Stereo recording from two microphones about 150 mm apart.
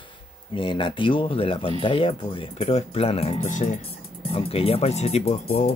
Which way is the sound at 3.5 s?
55° left (ahead or behind).